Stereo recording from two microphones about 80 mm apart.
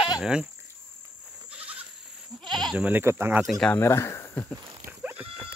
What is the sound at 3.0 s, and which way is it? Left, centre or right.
Speech, right.